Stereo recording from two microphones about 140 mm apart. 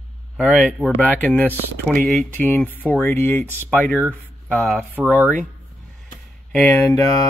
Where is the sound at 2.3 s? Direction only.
15° left (ahead or behind).